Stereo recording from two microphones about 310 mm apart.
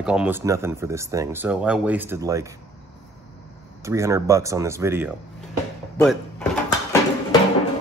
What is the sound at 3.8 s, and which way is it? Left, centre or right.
Speech, centre.